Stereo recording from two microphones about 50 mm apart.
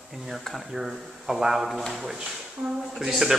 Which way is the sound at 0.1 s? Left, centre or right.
Centre.